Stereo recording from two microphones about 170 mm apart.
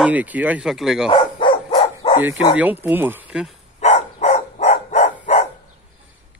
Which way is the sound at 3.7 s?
40° left (ahead or behind).